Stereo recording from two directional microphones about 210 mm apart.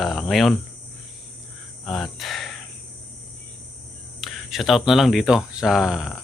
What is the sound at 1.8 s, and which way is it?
Speech, centre (ahead or behind).